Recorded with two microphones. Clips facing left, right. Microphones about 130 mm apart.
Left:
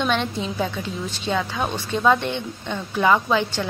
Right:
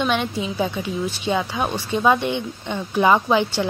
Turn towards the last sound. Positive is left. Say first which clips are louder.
# right 2 dB
turn(degrees=-15)  # may be behind; listen again after turning